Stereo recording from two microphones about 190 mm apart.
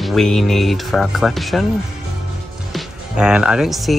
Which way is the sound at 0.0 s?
Centre (ahead or behind).